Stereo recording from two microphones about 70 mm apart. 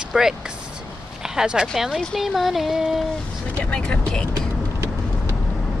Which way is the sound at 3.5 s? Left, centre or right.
Left.